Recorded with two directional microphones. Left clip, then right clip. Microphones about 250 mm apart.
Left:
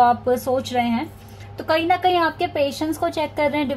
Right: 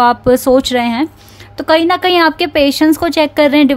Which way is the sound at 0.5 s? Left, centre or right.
Right.